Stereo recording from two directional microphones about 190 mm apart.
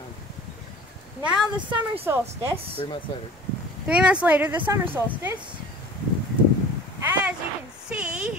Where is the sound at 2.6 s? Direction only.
30° right (ahead or behind).